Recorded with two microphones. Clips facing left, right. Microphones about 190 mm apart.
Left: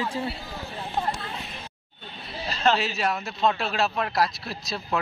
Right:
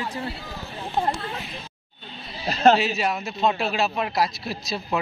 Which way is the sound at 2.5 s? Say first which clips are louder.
Right 6 dB; 45° right (ahead or behind).